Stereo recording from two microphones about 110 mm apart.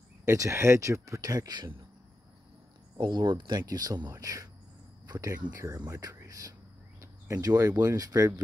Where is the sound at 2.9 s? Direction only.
45° right (ahead or behind).